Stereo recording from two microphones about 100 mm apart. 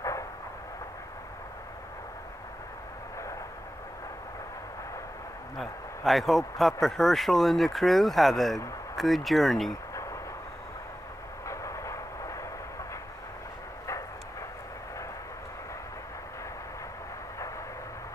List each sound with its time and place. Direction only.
5.6 s speech: centre (ahead or behind)
11.4 s vehicle: 30° left (ahead or behind)